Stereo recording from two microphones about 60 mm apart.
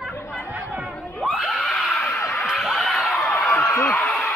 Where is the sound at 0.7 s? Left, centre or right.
Centre.